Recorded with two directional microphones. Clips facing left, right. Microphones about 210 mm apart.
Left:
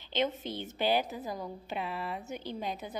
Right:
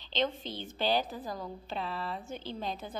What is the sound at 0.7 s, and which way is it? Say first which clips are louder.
A woman's voice: left 1 dB; 20° left (ahead or behind).